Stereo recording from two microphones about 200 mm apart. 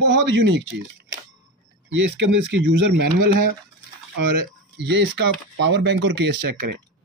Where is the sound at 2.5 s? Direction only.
65° right (ahead or behind).